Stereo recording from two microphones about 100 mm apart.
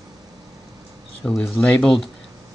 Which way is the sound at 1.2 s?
5° left (ahead or behind).